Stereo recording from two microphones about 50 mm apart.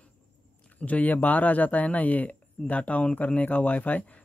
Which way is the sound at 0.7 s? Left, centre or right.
Left.